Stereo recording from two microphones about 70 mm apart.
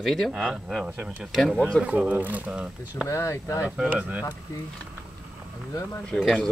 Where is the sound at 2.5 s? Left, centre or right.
Centre.